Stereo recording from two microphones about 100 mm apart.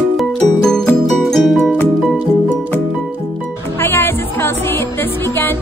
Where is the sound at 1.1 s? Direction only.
Centre (ahead or behind).